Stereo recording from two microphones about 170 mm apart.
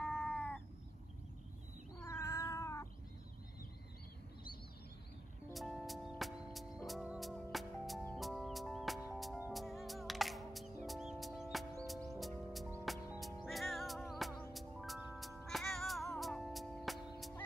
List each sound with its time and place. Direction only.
0.0 s cat: 5° left (ahead or behind)
2.0 s cat: 15° left (ahead or behind)
5.5 s music: centre (ahead or behind)